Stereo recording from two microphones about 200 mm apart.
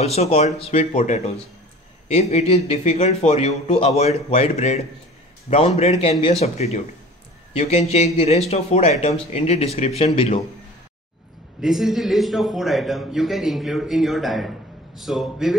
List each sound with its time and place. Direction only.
0.0 s a man's voice: 30° left (ahead or behind)
11.6 s a man's voice: centre (ahead or behind)